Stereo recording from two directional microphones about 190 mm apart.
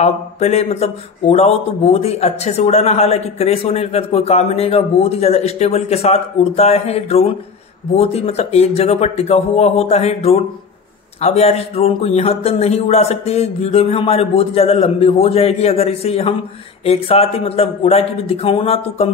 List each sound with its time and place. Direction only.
0.0 s a man's voice: 35° left (ahead or behind)